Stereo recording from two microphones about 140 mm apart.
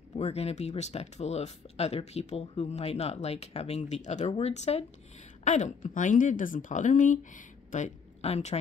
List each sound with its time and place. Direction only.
0.1 s speech: 45° left (ahead or behind)